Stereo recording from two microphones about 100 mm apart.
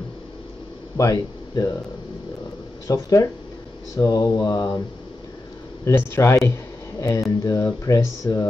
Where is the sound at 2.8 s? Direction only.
35° left (ahead or behind).